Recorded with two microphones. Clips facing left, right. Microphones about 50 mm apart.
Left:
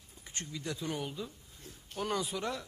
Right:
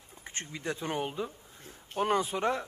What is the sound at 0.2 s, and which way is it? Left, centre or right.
A woman's voice, right.